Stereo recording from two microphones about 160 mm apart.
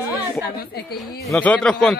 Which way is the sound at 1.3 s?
10° left (ahead or behind).